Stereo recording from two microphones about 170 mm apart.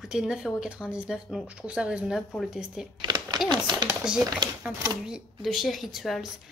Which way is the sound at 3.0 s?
25° right (ahead or behind).